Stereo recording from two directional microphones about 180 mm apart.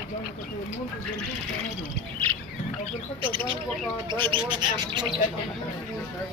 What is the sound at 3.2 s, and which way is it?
Speech, 25° right (ahead or behind).